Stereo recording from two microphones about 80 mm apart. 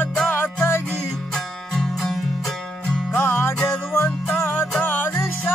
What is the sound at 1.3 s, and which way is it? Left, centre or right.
Music, centre.